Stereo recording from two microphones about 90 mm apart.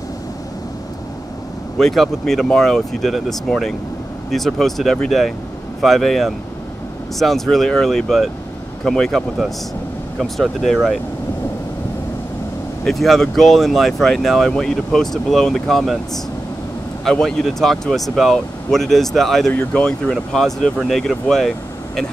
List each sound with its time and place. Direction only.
1.8 s speech: 5° left (ahead or behind)
12.8 s speech: 5° left (ahead or behind)
17.0 s speech: 5° left (ahead or behind)
19.5 s speech: 20° left (ahead or behind)
19.8 s speech: 5° left (ahead or behind)